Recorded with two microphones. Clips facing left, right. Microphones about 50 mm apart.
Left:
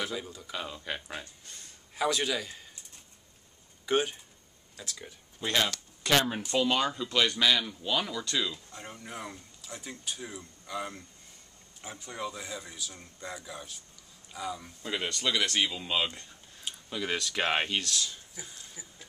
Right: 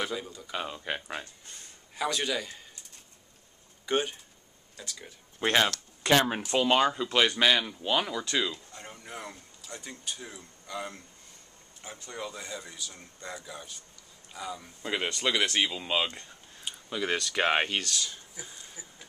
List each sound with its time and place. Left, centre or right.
0.0 s speech: centre
0.5 s speech: centre
2.0 s speech: centre
3.8 s speech: centre
5.4 s speech: right
8.7 s speech: centre
14.8 s speech: centre